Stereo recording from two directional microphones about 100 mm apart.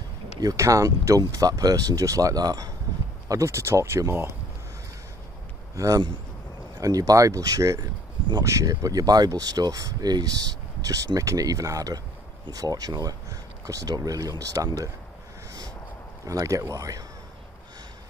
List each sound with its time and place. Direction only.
0.4 s speech: 35° right (ahead or behind)
5.8 s speech: 35° right (ahead or behind)
16.3 s speech: 35° right (ahead or behind)